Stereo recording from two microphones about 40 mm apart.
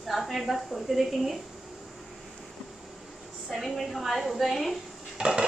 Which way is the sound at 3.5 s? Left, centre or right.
Centre.